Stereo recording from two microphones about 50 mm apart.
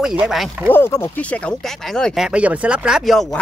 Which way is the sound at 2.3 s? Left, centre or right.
Right.